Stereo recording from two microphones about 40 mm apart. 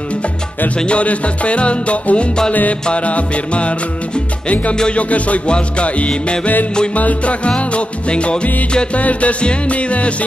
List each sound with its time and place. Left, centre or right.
0.7 s music: left
4.9 s music: left
7.0 s music: left
7.4 s music: left